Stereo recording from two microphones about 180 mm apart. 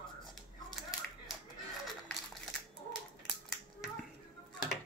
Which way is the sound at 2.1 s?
Centre (ahead or behind).